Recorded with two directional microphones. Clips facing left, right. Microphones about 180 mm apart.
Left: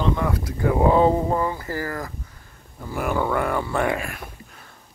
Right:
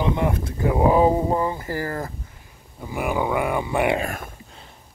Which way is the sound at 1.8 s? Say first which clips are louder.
Right 2 dB; 30° right (ahead or behind).